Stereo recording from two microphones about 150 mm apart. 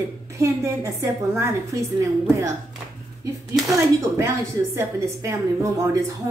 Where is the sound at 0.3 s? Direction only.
20° right (ahead or behind).